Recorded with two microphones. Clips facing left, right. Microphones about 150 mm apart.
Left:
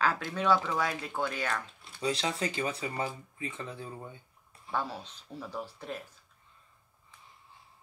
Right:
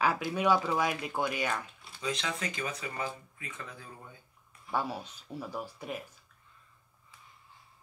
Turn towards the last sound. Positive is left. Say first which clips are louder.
# even
turn(degrees=-10)  # may be behind; listen again after turning